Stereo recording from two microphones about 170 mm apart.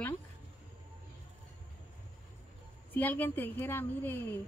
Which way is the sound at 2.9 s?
10° left (ahead or behind).